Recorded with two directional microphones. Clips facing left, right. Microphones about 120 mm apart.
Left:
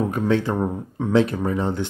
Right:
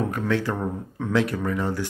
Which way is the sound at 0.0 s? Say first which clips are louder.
Left 4 dB; 20° left (ahead or behind).